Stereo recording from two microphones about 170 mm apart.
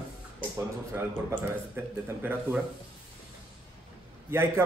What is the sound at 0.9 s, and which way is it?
A man's voice, 15° right (ahead or behind).